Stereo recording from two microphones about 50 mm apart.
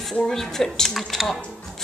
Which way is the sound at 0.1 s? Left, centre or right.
Centre.